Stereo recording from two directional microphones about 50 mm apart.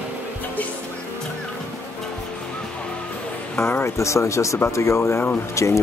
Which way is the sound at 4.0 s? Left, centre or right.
Left.